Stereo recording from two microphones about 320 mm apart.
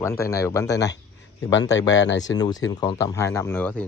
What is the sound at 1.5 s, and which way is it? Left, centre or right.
Speech, left.